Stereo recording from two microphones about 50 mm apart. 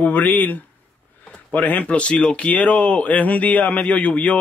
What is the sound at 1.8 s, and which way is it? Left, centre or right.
Speech, left.